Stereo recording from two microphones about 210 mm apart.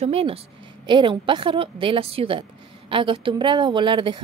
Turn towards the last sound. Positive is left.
turn(degrees=-25)  # may be behind; listen again after turning